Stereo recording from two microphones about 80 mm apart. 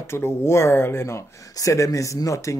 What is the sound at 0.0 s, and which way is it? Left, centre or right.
Speech, left.